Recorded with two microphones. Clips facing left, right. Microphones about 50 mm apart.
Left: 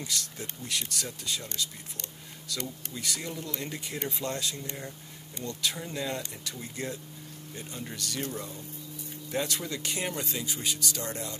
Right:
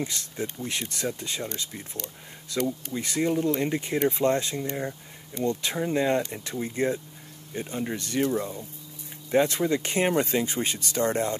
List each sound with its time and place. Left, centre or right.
0.0 s speech: right
2.5 s speech: right